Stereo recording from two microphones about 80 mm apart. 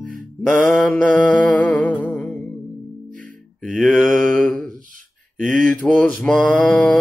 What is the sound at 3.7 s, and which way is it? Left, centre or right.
Mantra, centre.